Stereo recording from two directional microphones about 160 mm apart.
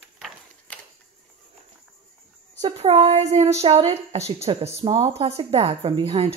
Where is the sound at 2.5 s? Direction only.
35° right (ahead or behind).